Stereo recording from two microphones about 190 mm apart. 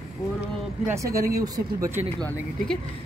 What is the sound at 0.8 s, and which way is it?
Speech, 15° right (ahead or behind).